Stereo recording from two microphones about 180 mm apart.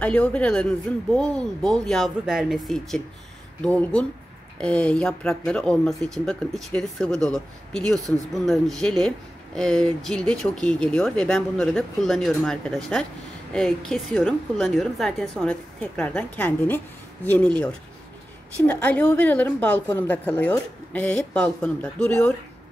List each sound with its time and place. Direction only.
0.0 s a woman's voice: 5° left (ahead or behind)
18.7 s a woman's voice: 10° left (ahead or behind)